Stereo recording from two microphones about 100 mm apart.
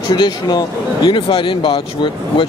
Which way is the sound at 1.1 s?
60° left (ahead or behind).